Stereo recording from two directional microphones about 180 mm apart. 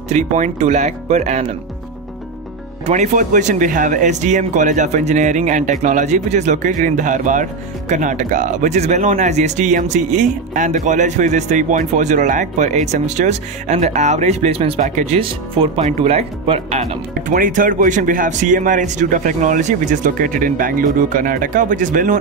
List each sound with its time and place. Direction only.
0.1 s speech: 40° right (ahead or behind)
2.9 s speech: 45° right (ahead or behind)